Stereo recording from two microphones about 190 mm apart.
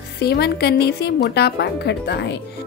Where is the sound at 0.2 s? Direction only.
60° left (ahead or behind).